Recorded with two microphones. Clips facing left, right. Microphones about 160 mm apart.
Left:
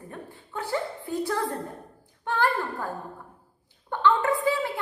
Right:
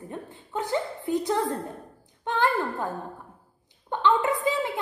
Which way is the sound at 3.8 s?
20° right (ahead or behind).